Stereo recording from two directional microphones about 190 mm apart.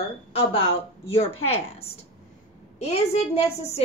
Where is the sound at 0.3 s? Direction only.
30° left (ahead or behind).